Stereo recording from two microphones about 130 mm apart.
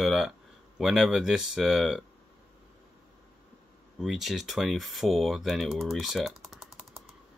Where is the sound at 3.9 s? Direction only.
Centre (ahead or behind).